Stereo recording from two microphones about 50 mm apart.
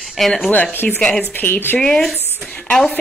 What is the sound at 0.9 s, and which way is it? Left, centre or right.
Speech, centre.